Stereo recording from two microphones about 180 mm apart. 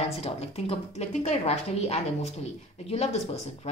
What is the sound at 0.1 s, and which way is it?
Speech, 35° left (ahead or behind).